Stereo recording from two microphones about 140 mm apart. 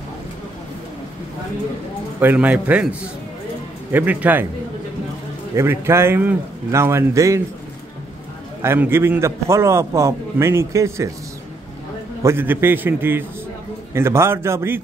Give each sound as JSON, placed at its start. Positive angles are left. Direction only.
{"t": 2.1, "sound": "a man's voice", "side_deg": -10}
{"t": 5.6, "sound": "a man's voice", "side_deg": -20}
{"t": 8.6, "sound": "a man's voice", "side_deg": -15}
{"t": 12.2, "sound": "a man's voice", "side_deg": -15}